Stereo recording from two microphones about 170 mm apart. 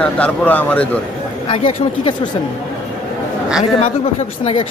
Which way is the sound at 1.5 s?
35° left (ahead or behind).